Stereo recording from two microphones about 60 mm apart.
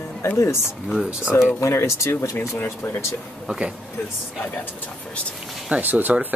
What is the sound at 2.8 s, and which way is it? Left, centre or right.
Speech, left.